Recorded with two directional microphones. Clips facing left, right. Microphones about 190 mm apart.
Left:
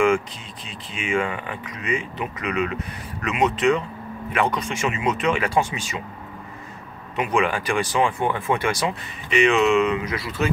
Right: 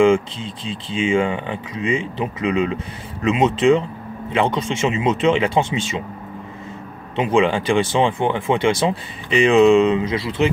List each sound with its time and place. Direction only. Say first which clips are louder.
0.0 s speech: right 5 dB; 25° right (ahead or behind)
7.2 s speech: right 5 dB; 25° right (ahead or behind)